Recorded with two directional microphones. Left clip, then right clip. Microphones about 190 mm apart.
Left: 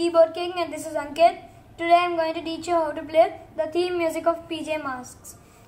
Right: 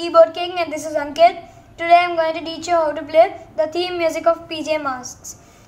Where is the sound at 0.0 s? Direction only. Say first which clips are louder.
Right 6 dB; 5° right (ahead or behind).